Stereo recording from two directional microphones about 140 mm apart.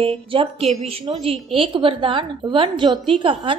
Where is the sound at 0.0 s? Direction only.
40° right (ahead or behind).